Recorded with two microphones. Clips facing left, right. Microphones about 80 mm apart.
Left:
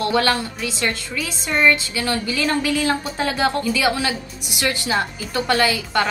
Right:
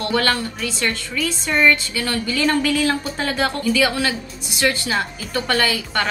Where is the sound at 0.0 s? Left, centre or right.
Left.